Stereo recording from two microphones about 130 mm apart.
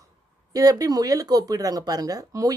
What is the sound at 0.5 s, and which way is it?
Speech, 30° right (ahead or behind).